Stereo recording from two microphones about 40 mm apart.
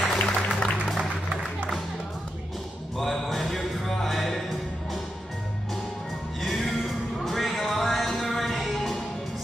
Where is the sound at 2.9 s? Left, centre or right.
Centre.